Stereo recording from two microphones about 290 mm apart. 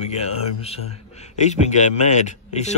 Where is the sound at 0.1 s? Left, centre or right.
Left.